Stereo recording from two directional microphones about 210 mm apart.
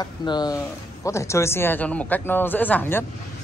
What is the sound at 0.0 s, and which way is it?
Speech, 20° left (ahead or behind).